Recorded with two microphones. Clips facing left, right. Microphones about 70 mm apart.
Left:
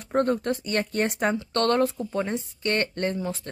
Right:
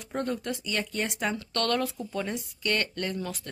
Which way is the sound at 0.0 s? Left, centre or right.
Left.